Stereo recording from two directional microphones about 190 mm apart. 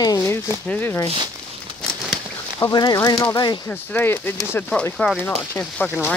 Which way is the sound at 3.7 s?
10° left (ahead or behind).